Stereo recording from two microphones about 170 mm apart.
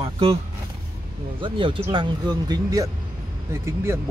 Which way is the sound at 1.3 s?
30° right (ahead or behind).